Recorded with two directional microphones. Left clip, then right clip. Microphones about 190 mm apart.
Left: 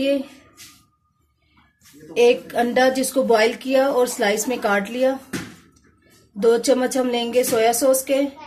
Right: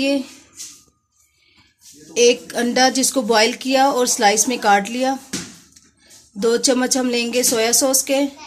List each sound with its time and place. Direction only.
2.1 s speech: 55° right (ahead or behind)
6.4 s speech: 55° right (ahead or behind)